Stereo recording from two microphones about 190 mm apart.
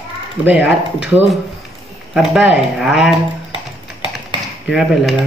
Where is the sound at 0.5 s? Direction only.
5° right (ahead or behind).